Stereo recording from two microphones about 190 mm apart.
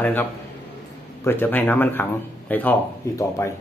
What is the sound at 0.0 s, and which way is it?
A man's voice, 10° left (ahead or behind).